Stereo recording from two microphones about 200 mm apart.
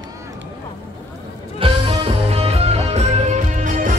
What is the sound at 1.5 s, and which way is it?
Music, 30° right (ahead or behind).